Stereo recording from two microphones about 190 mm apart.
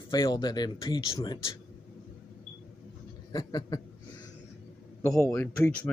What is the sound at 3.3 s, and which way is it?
Speech, 20° left (ahead or behind).